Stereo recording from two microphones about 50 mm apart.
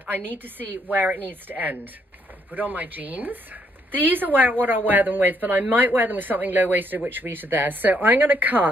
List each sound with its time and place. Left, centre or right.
0.0 s a woman's voice: right